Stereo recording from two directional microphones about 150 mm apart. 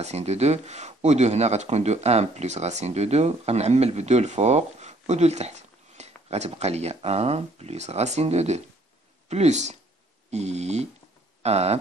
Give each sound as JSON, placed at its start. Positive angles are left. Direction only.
{"t": 0.0, "sound": "speech", "side_deg": -45}